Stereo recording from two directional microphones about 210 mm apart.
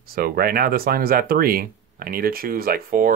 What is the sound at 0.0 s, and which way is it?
Speech, 45° right (ahead or behind).